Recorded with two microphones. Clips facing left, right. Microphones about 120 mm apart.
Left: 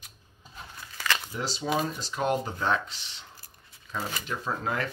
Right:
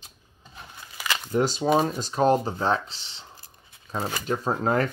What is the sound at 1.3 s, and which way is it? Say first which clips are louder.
Speech: right 8 dB; 50° right (ahead or behind).